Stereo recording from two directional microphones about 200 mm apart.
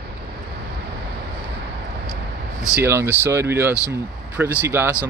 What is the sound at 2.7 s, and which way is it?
Speech, 10° right (ahead or behind).